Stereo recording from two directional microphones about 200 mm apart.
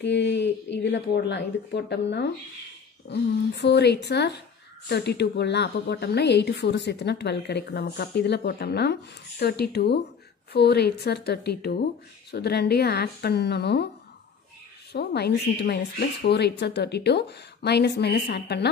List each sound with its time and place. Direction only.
0.0 s a woman's voice: 60° left (ahead or behind)
14.9 s a woman's voice: 55° left (ahead or behind)